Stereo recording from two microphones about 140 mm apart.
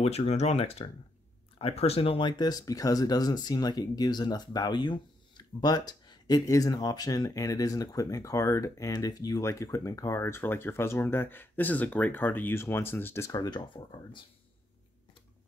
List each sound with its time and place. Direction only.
0.0 s speech: 50° left (ahead or behind); by 14.2 s 35° left (ahead or behind)